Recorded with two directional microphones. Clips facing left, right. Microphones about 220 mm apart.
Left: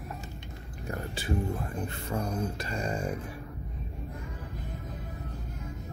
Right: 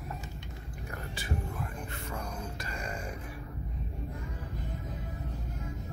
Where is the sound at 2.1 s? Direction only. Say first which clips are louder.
Left 9 dB; 30° left (ahead or behind).